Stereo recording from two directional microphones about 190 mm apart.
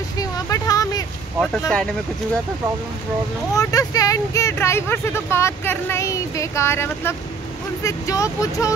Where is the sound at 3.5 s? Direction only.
20° left (ahead or behind).